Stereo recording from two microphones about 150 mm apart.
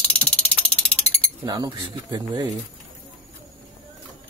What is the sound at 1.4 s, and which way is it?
Speech, 30° right (ahead or behind).